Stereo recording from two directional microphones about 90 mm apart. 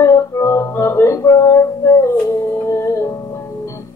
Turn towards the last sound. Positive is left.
turn(degrees=30)  # may be behind; listen again after turning